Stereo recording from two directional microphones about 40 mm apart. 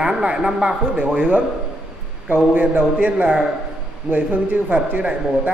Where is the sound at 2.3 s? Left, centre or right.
Right.